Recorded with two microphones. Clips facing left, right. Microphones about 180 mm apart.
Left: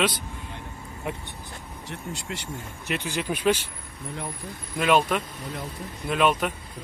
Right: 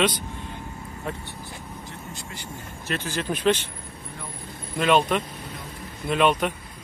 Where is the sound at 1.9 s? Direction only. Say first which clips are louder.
Left 4 dB; 75° left (ahead or behind).